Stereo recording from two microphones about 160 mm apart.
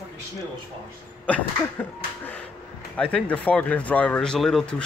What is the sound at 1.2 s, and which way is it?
Speech, 10° left (ahead or behind).